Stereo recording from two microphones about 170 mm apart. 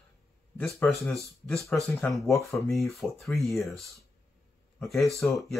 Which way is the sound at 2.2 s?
15° left (ahead or behind).